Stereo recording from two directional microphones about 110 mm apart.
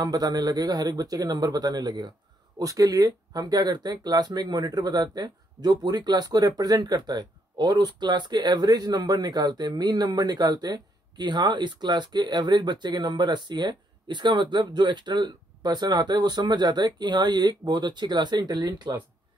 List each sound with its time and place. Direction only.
0.0 s speech: 35° right (ahead or behind)